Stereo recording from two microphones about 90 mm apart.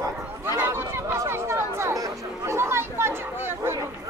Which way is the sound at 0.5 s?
25° right (ahead or behind).